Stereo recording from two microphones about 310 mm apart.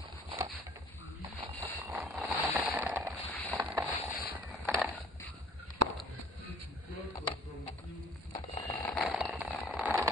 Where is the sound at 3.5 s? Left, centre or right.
Centre.